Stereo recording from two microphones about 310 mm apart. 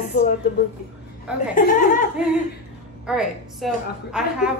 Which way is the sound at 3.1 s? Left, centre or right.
Centre.